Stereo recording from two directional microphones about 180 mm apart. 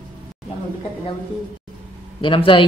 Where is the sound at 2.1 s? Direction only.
30° left (ahead or behind).